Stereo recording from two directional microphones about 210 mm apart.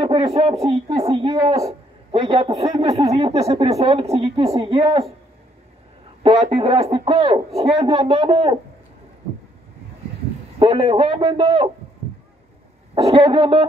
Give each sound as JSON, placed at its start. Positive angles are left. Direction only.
{"t": 0.0, "sound": "speech", "side_deg": -25}
{"t": 3.1, "sound": "speech", "side_deg": -30}
{"t": 6.2, "sound": "speech", "side_deg": -25}
{"t": 10.6, "sound": "speech", "side_deg": -25}
{"t": 12.9, "sound": "speech", "side_deg": -20}